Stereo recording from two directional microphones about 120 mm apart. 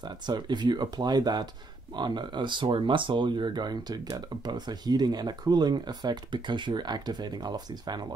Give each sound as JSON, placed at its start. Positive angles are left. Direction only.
{"t": 0.3, "sound": "speech", "side_deg": -40}